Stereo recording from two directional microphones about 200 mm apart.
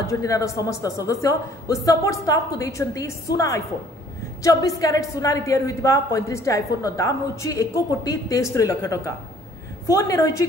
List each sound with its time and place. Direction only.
0.0 s a woman's voice: 15° left (ahead or behind)